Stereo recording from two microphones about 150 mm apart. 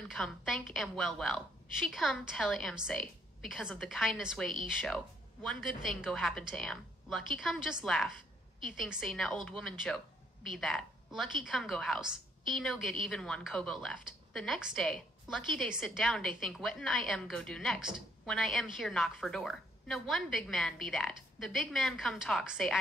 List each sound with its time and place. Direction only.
0.1 s a woman's voice: centre (ahead or behind)